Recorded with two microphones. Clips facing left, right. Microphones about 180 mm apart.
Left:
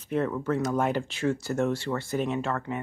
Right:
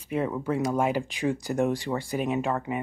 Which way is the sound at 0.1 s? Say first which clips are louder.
Even; 10° right (ahead or behind).